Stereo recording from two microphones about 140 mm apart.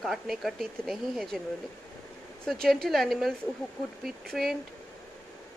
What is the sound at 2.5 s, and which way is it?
Speech, 5° left (ahead or behind).